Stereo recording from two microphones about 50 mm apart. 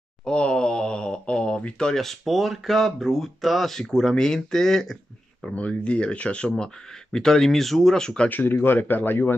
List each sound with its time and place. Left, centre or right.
0.2 s a sound: centre
2.0 s speech: centre
5.5 s speech: left
8.3 s speech: left